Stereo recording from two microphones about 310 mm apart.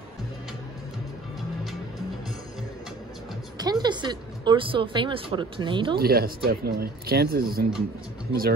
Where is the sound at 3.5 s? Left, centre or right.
Centre.